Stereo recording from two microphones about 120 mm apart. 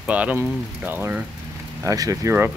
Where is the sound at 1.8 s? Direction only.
30° right (ahead or behind).